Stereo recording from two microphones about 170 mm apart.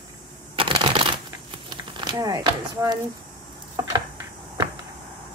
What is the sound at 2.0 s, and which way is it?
A woman's voice, 25° right (ahead or behind).